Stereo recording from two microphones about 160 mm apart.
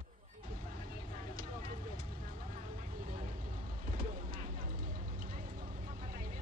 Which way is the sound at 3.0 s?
60° right (ahead or behind).